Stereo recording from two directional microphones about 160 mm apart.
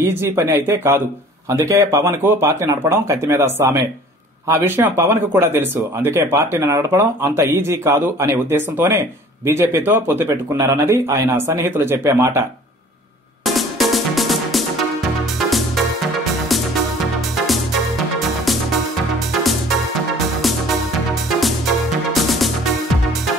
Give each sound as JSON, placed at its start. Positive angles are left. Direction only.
{"t": 0.1, "sound": "speech", "side_deg": -15}
{"t": 13.5, "sound": "music", "side_deg": 0}
{"t": 21.4, "sound": "music", "side_deg": 0}